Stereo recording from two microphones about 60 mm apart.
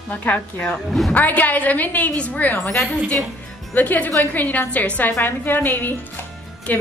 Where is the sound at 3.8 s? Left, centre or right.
Left.